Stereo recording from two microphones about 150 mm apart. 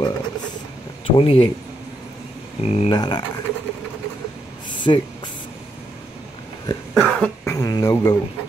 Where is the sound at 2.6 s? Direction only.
45° left (ahead or behind).